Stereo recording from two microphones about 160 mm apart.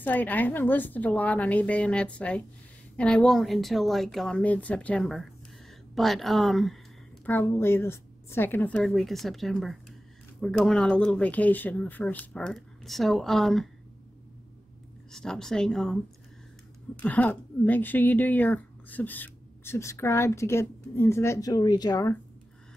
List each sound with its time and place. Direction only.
0.0 s a woman's voice: 10° left (ahead or behind)
7.2 s a woman's voice: 15° left (ahead or behind)
15.0 s a woman's voice: 5° left (ahead or behind); by 22.1 s 25° left (ahead or behind)